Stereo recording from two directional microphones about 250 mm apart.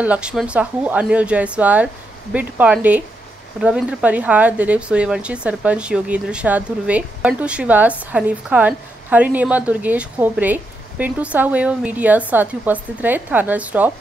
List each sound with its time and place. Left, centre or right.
0.0 s a woman's voice: centre